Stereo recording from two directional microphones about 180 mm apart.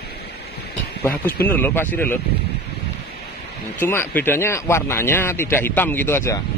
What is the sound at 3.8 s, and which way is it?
A man's voice, 10° left (ahead or behind).